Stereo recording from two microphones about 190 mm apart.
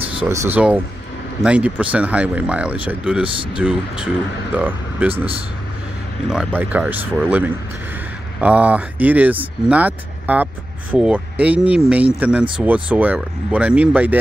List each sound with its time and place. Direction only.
0.2 s speech: 15° right (ahead or behind)
5.1 s speech: 30° right (ahead or behind)
6.3 s speech: 10° right (ahead or behind)